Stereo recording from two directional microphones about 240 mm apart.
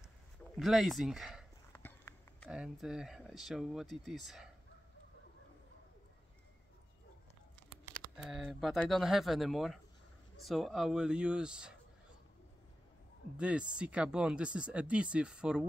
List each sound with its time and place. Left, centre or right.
0.6 s speech: centre
1.7 s horse: centre
2.4 s speech: centre
8.2 s speech: centre
13.4 s speech: centre